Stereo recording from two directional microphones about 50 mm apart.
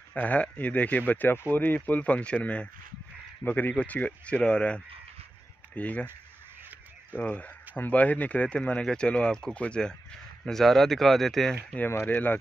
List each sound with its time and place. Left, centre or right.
0.1 s speech: left
7.2 s speech: left; by 11.5 s centre
12.1 s speech: left